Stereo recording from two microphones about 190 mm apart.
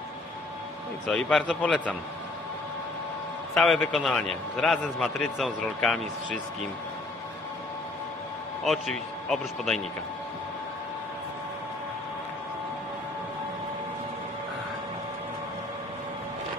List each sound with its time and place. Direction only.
1.0 s a man's voice: 5° left (ahead or behind)
3.5 s a man's voice: centre (ahead or behind)
8.6 s a man's voice: centre (ahead or behind)